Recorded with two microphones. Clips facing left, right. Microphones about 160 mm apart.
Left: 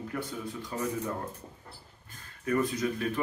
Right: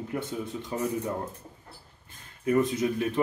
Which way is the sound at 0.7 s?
25° right (ahead or behind).